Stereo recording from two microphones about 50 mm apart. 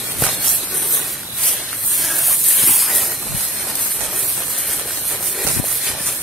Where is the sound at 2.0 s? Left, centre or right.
Centre.